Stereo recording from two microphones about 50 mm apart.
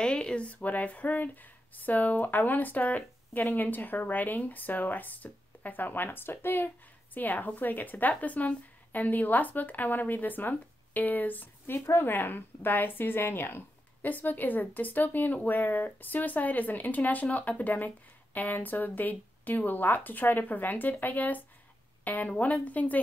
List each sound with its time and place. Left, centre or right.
0.0 s speech: centre